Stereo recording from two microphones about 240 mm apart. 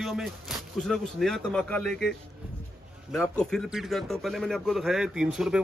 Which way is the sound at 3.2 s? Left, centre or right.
Centre.